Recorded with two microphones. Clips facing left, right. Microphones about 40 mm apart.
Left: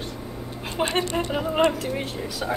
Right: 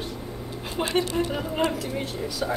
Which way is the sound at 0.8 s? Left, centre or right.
Left.